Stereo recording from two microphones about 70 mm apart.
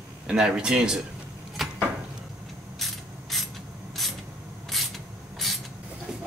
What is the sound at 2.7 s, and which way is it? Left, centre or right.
Mechanisms, centre.